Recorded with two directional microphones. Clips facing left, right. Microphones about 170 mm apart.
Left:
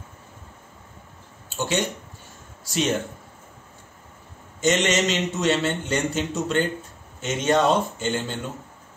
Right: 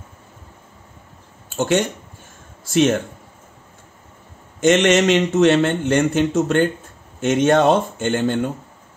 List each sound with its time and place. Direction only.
1.5 s a man's voice: 50° right (ahead or behind)
4.6 s a man's voice: 55° right (ahead or behind)